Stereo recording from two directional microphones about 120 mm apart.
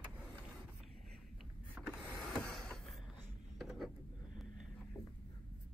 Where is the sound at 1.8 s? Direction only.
10° right (ahead or behind).